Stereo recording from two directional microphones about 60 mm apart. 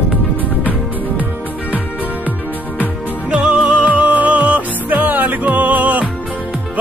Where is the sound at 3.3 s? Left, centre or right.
Centre.